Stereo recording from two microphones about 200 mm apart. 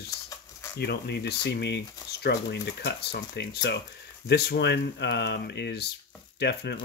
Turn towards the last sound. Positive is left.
turn(degrees=55)  # may be behind; listen again after turning